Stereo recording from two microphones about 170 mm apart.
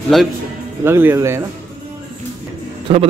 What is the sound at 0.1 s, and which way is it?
Speech, centre (ahead or behind).